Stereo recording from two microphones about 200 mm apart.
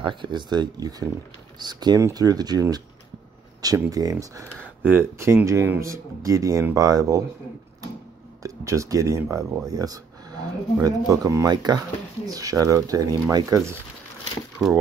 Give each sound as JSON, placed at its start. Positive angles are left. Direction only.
{"t": 0.0, "sound": "speech", "side_deg": -25}
{"t": 8.4, "sound": "speech", "side_deg": -15}
{"t": 14.6, "sound": "speech", "side_deg": 0}